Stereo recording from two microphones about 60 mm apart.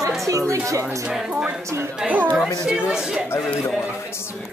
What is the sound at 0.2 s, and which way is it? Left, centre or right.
Speech, right.